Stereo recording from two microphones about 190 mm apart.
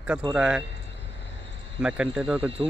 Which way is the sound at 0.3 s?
5° right (ahead or behind).